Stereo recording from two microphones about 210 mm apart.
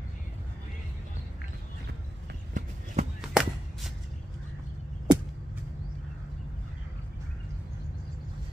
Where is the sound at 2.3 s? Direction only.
40° right (ahead or behind).